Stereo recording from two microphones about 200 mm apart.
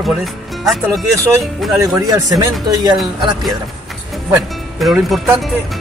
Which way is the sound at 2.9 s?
Centre (ahead or behind).